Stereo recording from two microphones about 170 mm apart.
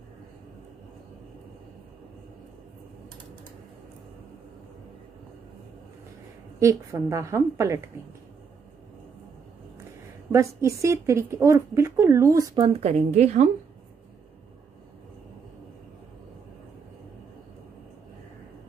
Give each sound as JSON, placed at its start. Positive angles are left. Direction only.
{"t": 6.6, "sound": "speech", "side_deg": -15}
{"t": 10.3, "sound": "speech", "side_deg": -20}
{"t": 12.8, "sound": "speech", "side_deg": -40}